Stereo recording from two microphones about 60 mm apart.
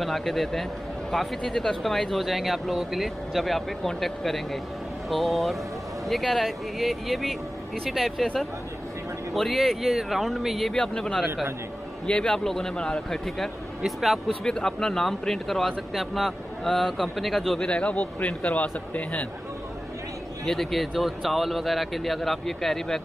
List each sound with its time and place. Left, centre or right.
0.0 s speech: centre
9.3 s speech: centre
10.7 s speech: centre
14.4 s speech: centre
17.6 s a man's voice: left
20.4 s speech: centre